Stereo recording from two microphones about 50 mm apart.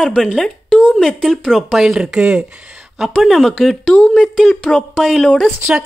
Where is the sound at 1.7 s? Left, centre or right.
Centre.